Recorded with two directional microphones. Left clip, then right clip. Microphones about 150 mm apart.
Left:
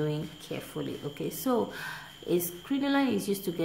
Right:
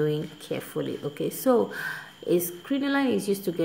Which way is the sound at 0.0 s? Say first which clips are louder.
Right 6 dB; 25° right (ahead or behind).